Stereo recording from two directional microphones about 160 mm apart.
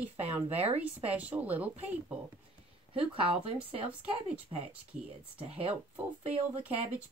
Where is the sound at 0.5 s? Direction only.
40° right (ahead or behind).